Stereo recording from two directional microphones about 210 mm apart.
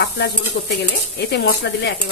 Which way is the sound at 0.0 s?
55° left (ahead or behind).